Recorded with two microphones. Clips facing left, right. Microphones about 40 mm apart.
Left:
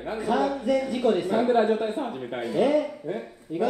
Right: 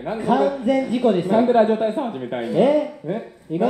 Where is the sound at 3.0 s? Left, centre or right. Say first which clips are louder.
Right 5 dB; right.